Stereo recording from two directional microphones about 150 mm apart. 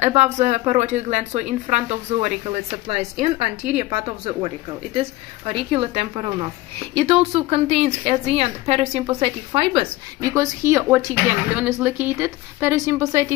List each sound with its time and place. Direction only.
0.0 s a woman's voice: 50° right (ahead or behind)
4.3 s a woman's voice: 30° right (ahead or behind)
10.2 s speech: 20° right (ahead or behind)